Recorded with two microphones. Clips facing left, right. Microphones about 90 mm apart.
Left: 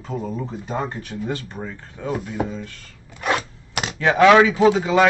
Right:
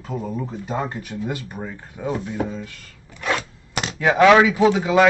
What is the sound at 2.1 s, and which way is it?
Speech, centre (ahead or behind).